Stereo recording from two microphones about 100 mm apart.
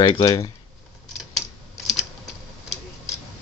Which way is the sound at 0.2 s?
35° left (ahead or behind).